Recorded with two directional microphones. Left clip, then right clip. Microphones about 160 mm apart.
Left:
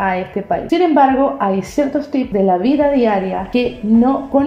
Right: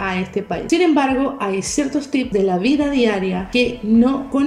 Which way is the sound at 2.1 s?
Centre (ahead or behind).